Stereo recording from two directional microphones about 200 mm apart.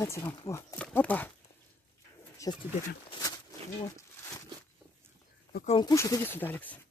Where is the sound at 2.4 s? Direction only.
15° left (ahead or behind).